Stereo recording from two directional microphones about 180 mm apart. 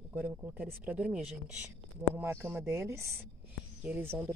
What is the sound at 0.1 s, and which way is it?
Speech, 10° right (ahead or behind).